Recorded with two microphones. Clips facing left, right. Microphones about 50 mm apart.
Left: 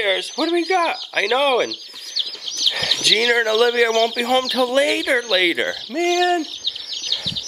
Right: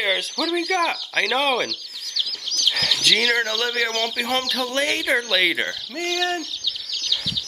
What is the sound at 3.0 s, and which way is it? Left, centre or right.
Speech, centre.